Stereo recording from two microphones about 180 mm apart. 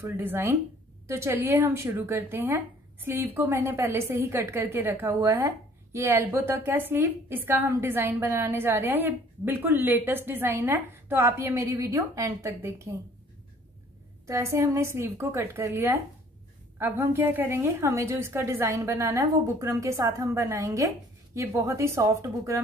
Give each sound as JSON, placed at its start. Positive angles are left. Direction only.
{"t": 0.0, "sound": "a woman's voice", "side_deg": -15}
{"t": 14.2, "sound": "a woman's voice", "side_deg": -15}